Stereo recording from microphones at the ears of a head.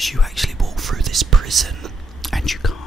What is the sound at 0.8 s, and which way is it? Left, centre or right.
Whispering, right.